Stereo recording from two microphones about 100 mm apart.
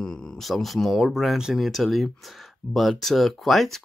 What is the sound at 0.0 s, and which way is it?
Speech, 5° left (ahead or behind).